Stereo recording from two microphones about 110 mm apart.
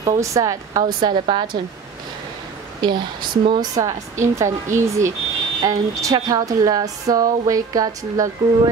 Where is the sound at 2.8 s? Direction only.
45° right (ahead or behind).